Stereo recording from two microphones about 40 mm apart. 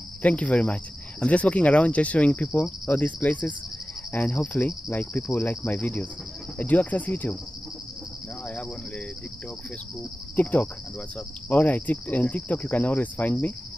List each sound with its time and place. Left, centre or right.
0.2 s speech: left
2.9 s speech: left
5.7 s speech: left
8.5 s cricket: left
10.3 s speech: left